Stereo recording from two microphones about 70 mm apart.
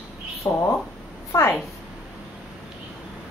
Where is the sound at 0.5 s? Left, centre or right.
Left.